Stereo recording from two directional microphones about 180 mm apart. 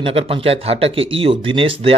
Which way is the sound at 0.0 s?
30° right (ahead or behind).